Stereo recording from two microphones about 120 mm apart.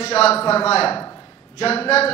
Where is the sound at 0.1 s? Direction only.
60° left (ahead or behind).